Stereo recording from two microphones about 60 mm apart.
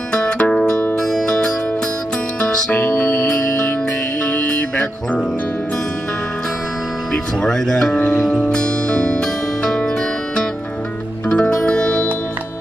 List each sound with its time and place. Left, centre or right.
0.1 s music: centre
2.7 s music: left
4.3 s music: left
7.4 s music: centre
11.2 s music: centre